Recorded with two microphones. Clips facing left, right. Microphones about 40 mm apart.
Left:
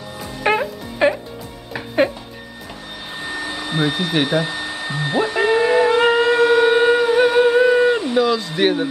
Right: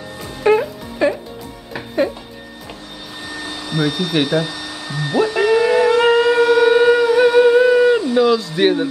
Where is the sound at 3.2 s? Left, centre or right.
Left.